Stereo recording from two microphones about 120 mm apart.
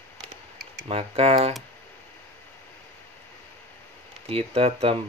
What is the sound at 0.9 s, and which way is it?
Speech, 60° right (ahead or behind).